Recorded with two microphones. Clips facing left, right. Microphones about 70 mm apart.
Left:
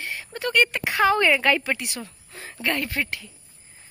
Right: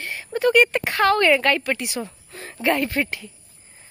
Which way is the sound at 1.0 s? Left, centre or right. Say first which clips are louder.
Right 2 dB; centre.